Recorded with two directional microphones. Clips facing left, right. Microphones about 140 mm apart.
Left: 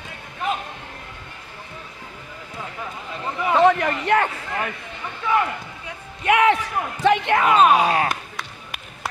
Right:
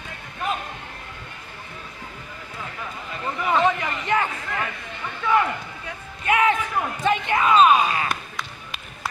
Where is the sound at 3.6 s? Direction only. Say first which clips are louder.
Left 6 dB; 60° left (ahead or behind).